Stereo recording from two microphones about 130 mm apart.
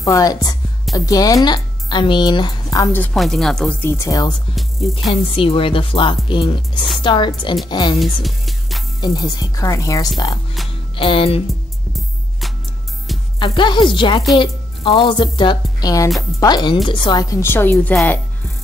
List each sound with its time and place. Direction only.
0.0 s speech: 25° left (ahead or behind)
3.2 s speech: 5° left (ahead or behind)
3.8 s speech: 20° left (ahead or behind)
4.6 s music: centre (ahead or behind)
5.3 s a woman's voice: 45° left (ahead or behind)
8.0 s music: centre (ahead or behind)
9.0 s speech: 30° left (ahead or behind)
11.0 s speech: 45° left (ahead or behind)
11.9 s music: centre (ahead or behind)
13.4 s a woman's voice: 40° left (ahead or behind)
17.4 s a woman's voice: 15° left (ahead or behind)